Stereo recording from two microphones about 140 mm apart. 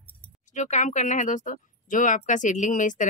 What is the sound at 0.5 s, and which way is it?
Speech, 60° left (ahead or behind).